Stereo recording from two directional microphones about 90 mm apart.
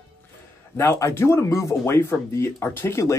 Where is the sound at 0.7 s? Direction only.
30° left (ahead or behind).